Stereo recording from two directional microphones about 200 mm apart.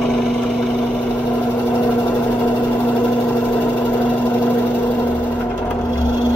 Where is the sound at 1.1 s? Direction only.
10° left (ahead or behind).